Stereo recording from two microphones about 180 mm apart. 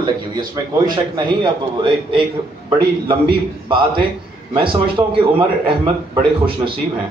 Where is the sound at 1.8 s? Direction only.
25° right (ahead or behind).